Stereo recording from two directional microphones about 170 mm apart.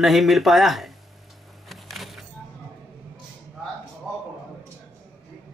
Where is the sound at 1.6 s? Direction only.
Centre (ahead or behind).